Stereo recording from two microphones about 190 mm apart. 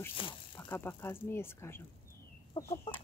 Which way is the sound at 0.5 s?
10° left (ahead or behind).